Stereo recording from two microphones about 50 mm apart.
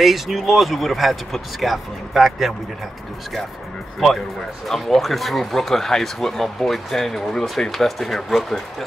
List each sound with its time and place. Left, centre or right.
0.0 s speech: centre
4.6 s speech: centre